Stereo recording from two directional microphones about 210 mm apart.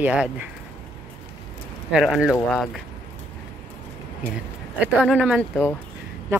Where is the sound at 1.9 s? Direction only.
Centre (ahead or behind).